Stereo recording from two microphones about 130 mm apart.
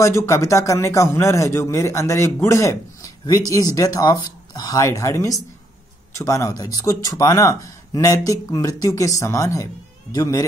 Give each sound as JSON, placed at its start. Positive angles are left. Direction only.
{"t": 0.0, "sound": "a man's voice", "side_deg": 25}